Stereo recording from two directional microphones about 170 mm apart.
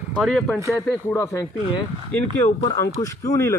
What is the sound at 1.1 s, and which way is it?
Speech, 15° left (ahead or behind).